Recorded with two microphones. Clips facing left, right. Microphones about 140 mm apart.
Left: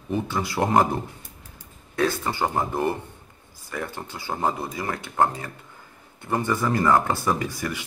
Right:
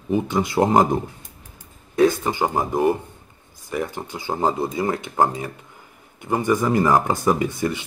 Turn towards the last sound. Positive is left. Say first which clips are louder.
# right 5 dB
turn(degrees=-25)  # may be behind; listen again after turning